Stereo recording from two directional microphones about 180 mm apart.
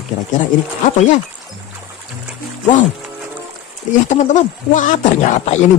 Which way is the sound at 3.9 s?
45° left (ahead or behind).